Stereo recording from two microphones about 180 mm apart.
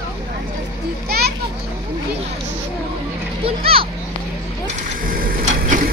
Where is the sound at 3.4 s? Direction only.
30° right (ahead or behind).